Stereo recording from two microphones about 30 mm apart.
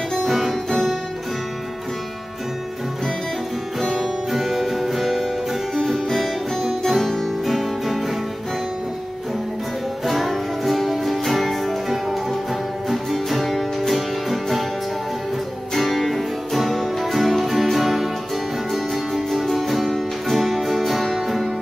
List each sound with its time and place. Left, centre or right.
0.2 s music: centre
4.0 s music: centre
6.8 s music: centre
10.0 s music: centre
12.8 s music: centre
15.7 s music: centre